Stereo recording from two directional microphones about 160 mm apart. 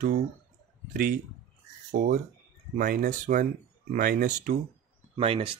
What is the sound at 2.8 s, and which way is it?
Speech, 55° right (ahead or behind).